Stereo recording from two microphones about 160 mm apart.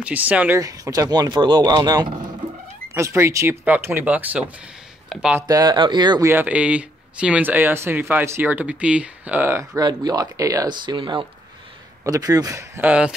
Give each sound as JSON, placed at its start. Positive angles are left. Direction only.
{"t": 0.0, "sound": "speech", "side_deg": -10}
{"t": 0.6, "sound": "speech", "side_deg": -20}
{"t": 5.5, "sound": "speech", "side_deg": -25}
{"t": 6.3, "sound": "speech", "side_deg": -10}